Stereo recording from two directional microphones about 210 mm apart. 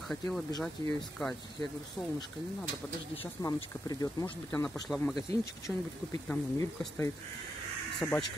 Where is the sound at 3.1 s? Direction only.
25° left (ahead or behind).